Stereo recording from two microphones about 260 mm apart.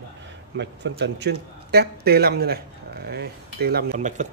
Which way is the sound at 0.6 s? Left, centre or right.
Right.